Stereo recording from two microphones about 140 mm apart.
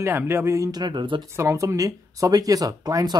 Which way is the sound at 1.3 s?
20° right (ahead or behind).